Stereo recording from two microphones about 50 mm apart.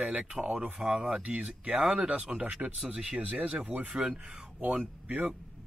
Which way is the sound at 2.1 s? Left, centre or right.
Right.